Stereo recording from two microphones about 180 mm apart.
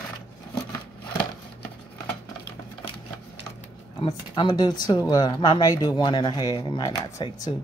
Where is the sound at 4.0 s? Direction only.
25° left (ahead or behind).